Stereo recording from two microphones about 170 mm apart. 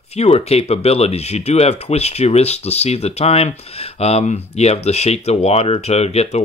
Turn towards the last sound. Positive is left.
turn(degrees=40)  # may be behind; listen again after turning